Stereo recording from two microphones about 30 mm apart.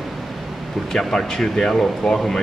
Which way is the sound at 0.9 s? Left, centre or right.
Centre.